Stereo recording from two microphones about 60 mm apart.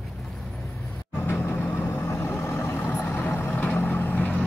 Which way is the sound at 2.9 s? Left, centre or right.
Left.